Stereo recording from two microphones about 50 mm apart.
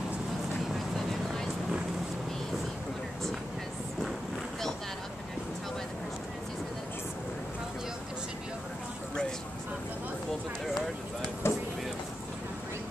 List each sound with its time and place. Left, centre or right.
0.9 s vehicle: centre
11.4 s vehicle: left